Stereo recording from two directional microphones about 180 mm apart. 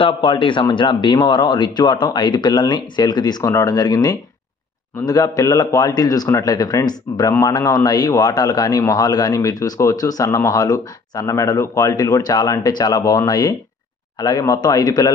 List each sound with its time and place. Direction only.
0.0 s a man's voice: 25° left (ahead or behind)